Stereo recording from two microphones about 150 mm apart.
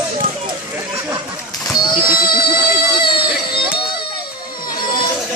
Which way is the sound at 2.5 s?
30° left (ahead or behind).